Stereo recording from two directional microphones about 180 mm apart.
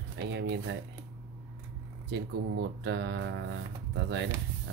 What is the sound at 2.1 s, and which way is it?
Speech, 75° right (ahead or behind).